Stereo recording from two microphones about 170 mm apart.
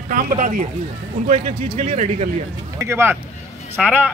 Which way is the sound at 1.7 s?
45° right (ahead or behind).